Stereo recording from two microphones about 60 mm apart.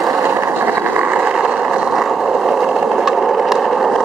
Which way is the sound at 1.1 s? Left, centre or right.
Centre.